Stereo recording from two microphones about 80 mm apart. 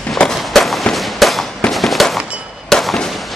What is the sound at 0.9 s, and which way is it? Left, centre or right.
Fireworks, centre.